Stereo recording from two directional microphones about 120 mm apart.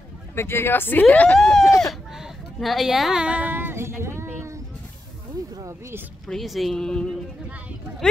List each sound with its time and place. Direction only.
0.4 s speech: 20° left (ahead or behind)
1.8 s a sound: centre (ahead or behind); by 4.6 s 20° right (ahead or behind)
5.6 s speech: 25° right (ahead or behind)
6.2 s speech: centre (ahead or behind)